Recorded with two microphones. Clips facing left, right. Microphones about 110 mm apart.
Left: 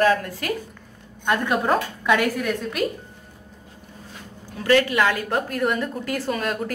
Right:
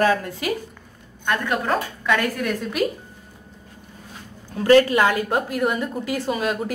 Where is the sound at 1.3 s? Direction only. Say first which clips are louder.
Left 2 dB; 20° left (ahead or behind).